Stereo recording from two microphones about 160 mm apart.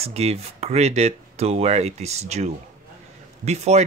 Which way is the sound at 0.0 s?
40° right (ahead or behind).